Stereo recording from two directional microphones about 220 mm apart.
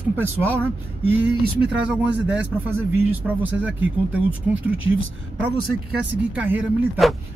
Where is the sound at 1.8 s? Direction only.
5° right (ahead or behind).